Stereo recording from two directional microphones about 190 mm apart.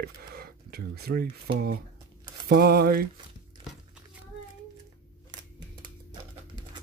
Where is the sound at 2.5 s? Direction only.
55° right (ahead or behind).